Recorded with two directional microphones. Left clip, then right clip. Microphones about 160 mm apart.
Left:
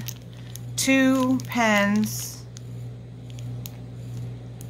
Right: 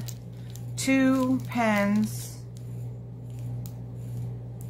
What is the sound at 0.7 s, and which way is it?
Speech, 20° left (ahead or behind).